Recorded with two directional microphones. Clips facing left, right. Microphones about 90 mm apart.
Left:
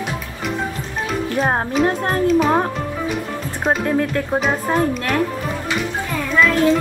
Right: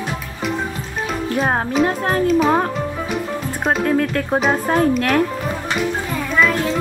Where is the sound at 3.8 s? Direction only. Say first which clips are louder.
Right 1 dB; 20° left (ahead or behind).